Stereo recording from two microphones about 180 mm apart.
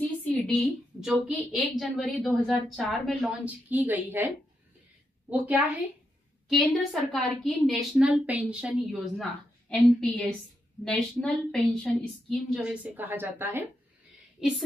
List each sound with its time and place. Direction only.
0.0 s a woman's voice: 5° left (ahead or behind)
3.4 s a woman's voice: 10° right (ahead or behind)
5.3 s a woman's voice: 10° right (ahead or behind)
12.9 s a woman's voice: 10° right (ahead or behind)